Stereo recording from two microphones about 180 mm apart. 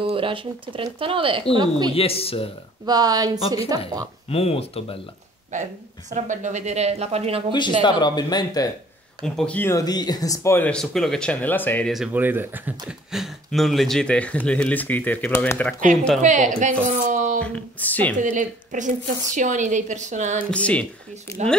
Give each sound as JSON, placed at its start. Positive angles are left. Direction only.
{"t": 0.0, "sound": "speech", "side_deg": -30}
{"t": 1.9, "sound": "speech", "side_deg": 30}
{"t": 2.8, "sound": "speech", "side_deg": -20}
{"t": 4.3, "sound": "speech", "side_deg": 35}
{"t": 5.5, "sound": "a woman's voice", "side_deg": -40}
{"t": 7.8, "sound": "speech", "side_deg": 25}
{"t": 9.2, "sound": "speech", "side_deg": 5}
{"t": 11.9, "sound": "speech", "side_deg": -5}
{"t": 16.2, "sound": "a woman's voice", "side_deg": -45}
{"t": 16.8, "sound": "a sound", "side_deg": -45}
{"t": 17.4, "sound": "speech", "side_deg": 5}
{"t": 18.2, "sound": "a woman's voice", "side_deg": -45}
{"t": 20.5, "sound": "speech", "side_deg": 5}